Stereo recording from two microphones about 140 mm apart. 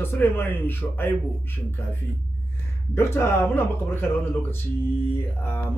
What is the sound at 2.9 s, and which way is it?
Speech, 15° left (ahead or behind).